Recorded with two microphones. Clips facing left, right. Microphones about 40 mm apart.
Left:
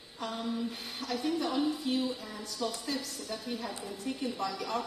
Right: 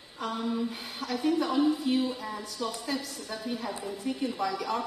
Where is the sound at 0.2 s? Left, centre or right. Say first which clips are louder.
Right 4 dB; centre.